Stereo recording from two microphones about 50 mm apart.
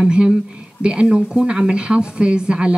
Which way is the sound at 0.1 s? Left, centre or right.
Centre.